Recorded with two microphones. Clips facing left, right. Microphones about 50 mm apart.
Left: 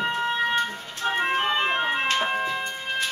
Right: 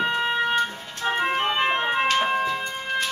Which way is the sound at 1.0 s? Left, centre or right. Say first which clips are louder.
Right 1 dB; centre.